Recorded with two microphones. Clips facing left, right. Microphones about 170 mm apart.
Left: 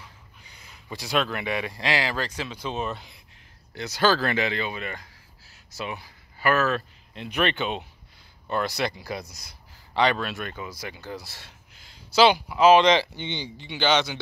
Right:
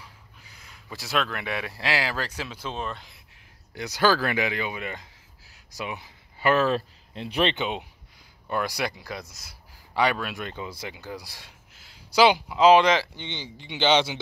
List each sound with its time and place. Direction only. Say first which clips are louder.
0.4 s speech: even; centre (ahead or behind)
2.7 s speech: left 3 dB; 5° left (ahead or behind)
3.7 s speech: even; 15° right (ahead or behind); by 7.5 s 30° right (ahead or behind)
7.5 s speech: even; 15° right (ahead or behind)
12.1 s speech: even; 15° right (ahead or behind); by 13.5 s 5° left (ahead or behind)
13.6 s speech: right 2 dB; 20° right (ahead or behind)